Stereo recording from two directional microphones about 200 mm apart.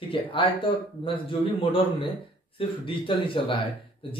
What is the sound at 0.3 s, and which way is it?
Speech, 25° left (ahead or behind).